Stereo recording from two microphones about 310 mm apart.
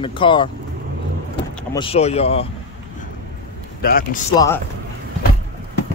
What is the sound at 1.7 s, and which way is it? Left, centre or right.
Speech, centre.